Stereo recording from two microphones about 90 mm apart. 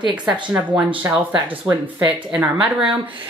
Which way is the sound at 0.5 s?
20° right (ahead or behind).